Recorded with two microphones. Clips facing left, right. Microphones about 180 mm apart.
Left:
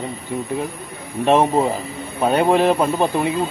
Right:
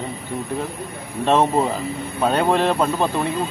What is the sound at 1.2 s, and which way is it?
A man's voice, 15° left (ahead or behind).